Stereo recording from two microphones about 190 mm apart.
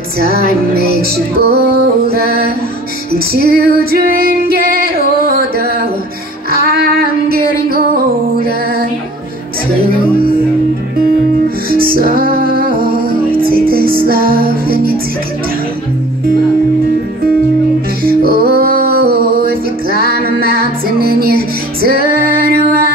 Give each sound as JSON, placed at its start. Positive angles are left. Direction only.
{"t": 0.2, "sound": "music", "side_deg": -55}
{"t": 3.1, "sound": "female singing", "side_deg": -55}
{"t": 6.5, "sound": "music", "side_deg": -50}
{"t": 11.7, "sound": "music", "side_deg": -50}
{"t": 18.0, "sound": "music", "side_deg": -50}